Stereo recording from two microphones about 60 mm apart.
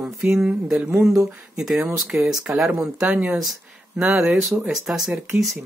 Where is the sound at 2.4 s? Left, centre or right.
Right.